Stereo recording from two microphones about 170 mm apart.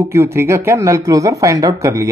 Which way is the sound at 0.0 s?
15° right (ahead or behind).